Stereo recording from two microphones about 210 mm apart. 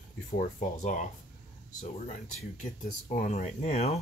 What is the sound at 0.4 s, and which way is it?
Speech, 35° left (ahead or behind).